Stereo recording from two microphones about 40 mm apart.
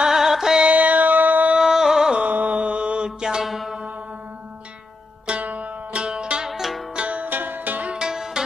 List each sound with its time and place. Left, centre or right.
0.0 s music: centre
0.7 s music: right
1.6 s music: centre
2.2 s mantra: right; by 3.4 s centre
3.4 s music: centre
5.4 s zither: right
5.9 s music: right
6.5 s music: centre
7.0 s music: right
7.2 s music: right
7.9 s music: centre